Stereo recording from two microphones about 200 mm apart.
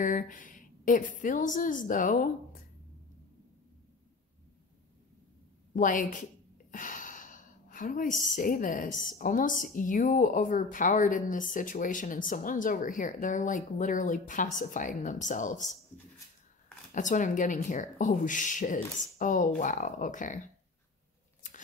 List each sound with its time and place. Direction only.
0.0 s speech: 40° left (ahead or behind)
5.7 s speech: 40° left (ahead or behind)
16.9 s speech: 40° left (ahead or behind)